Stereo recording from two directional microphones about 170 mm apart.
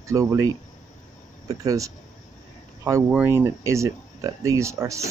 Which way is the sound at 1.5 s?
20° right (ahead or behind).